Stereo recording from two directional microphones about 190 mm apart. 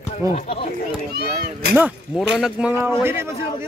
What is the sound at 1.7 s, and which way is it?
Speech, 5° right (ahead or behind).